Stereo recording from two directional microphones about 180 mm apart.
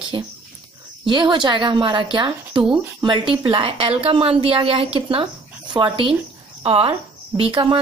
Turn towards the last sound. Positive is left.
turn(degrees=-30)  # may be behind; listen again after turning